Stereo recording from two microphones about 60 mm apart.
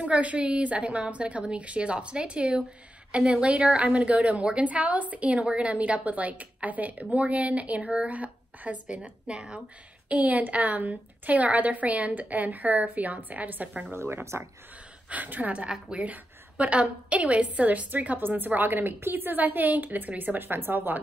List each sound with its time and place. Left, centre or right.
0.0 s a woman's voice: right
13.9 s speech: right
15.0 s a woman's voice: right